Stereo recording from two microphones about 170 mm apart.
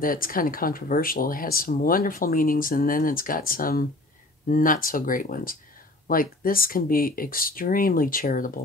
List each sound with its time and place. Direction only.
0.0 s speech: 55° left (ahead or behind)